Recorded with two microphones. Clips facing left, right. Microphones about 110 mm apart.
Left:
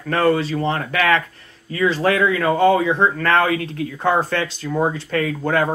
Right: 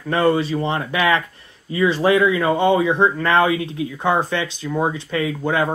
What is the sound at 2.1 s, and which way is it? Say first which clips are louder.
Speech: right 2 dB; 15° right (ahead or behind).